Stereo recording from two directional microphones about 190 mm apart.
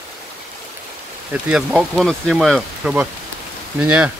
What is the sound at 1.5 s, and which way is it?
Speech, 5° right (ahead or behind).